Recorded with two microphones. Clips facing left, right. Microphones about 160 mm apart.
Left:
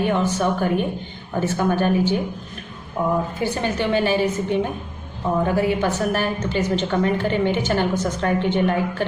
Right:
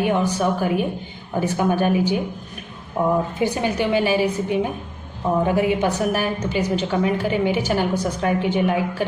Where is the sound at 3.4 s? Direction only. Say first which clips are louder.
Right 2 dB; 15° right (ahead or behind).